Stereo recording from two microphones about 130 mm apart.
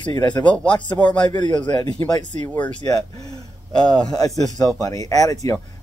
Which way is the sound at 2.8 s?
30° left (ahead or behind).